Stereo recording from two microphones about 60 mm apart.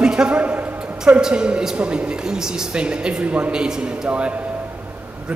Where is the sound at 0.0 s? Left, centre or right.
Centre.